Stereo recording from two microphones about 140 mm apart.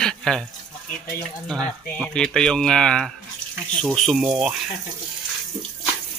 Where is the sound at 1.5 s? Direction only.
5° left (ahead or behind).